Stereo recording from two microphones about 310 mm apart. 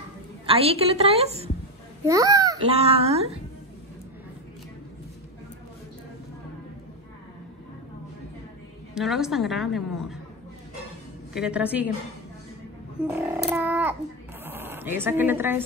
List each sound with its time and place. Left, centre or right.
0.5 s a woman's voice: centre
8.9 s a woman's voice: centre
11.3 s a woman's voice: centre
13.0 s a woman's voice: centre